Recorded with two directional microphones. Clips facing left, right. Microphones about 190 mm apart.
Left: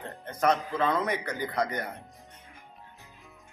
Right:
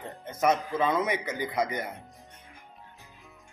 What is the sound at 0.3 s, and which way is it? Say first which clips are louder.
A man's voice: right 1 dB; 5° right (ahead or behind).